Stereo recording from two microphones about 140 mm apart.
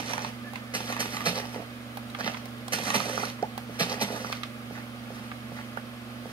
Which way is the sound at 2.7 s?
40° right (ahead or behind).